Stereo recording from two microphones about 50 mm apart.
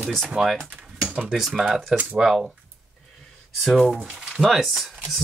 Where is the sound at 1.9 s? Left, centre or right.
Right.